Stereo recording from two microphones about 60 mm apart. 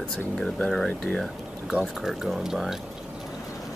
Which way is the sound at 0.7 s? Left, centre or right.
Centre.